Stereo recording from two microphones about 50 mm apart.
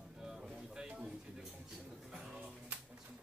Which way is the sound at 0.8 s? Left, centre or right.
Right.